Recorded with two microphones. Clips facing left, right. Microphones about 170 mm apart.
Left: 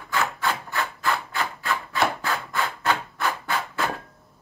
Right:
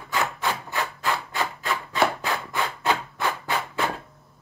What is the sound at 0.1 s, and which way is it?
Rub, 20° right (ahead or behind).